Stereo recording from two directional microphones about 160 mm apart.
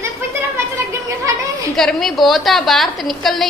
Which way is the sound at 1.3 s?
20° right (ahead or behind).